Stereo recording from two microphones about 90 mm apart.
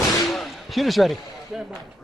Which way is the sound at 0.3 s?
Centre (ahead or behind).